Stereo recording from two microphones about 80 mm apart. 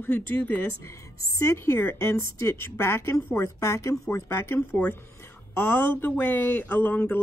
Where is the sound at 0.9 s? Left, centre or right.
Left.